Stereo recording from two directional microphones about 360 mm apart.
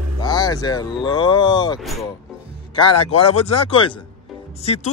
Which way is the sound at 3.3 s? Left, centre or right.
Centre.